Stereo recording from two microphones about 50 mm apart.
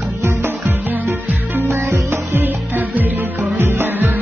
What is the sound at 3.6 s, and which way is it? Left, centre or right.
Music, right.